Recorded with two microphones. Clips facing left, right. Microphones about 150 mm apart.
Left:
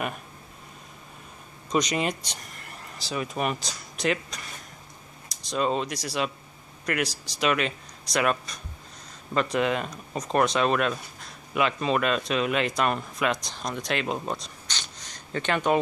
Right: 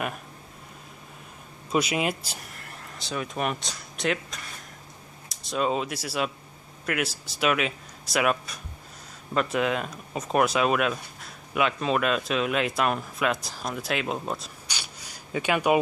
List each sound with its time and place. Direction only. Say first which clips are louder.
1.7 s speech: even; 5° right (ahead or behind)